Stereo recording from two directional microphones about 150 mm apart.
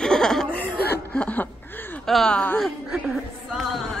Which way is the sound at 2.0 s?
5° left (ahead or behind).